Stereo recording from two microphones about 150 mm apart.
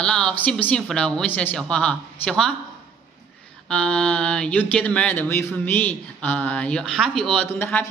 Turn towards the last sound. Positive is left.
turn(degrees=15)  # may be behind; listen again after turning